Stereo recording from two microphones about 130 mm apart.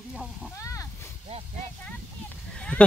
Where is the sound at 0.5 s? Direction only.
25° left (ahead or behind).